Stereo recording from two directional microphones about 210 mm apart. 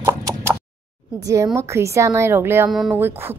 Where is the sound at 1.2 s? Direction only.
15° right (ahead or behind).